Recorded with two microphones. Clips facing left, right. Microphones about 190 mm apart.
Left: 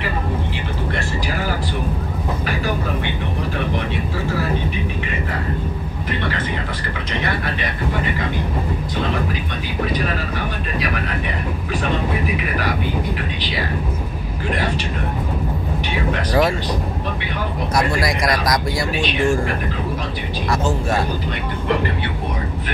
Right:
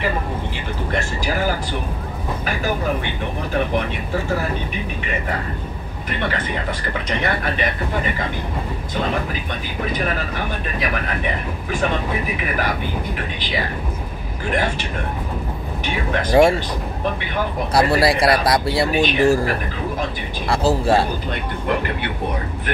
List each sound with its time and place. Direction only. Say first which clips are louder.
16.3 s speech: right 5 dB; 25° right (ahead or behind)
17.7 s speech: right 4 dB; 35° right (ahead or behind)
20.4 s speech: right 4 dB; 30° right (ahead or behind)